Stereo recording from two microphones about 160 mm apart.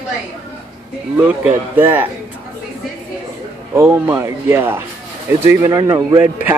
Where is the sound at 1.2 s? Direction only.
10° right (ahead or behind).